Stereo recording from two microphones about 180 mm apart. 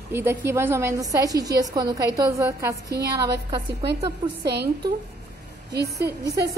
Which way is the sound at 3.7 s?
70° right (ahead or behind).